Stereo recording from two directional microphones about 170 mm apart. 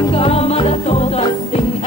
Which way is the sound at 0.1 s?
35° left (ahead or behind).